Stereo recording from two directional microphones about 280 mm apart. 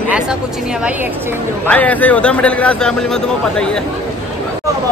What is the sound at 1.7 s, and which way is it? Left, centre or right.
A man's voice, centre.